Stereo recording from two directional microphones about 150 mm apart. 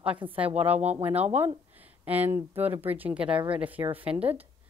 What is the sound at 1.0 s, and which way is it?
Speech, 45° right (ahead or behind).